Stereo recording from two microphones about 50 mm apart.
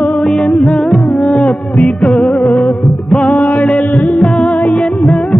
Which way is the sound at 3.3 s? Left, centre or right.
Left.